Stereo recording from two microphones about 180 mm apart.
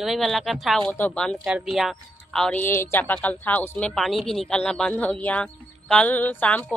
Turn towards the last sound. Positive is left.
turn(degrees=5)  # may be behind; listen again after turning